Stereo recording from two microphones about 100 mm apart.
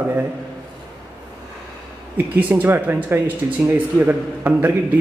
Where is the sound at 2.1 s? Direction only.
20° right (ahead or behind).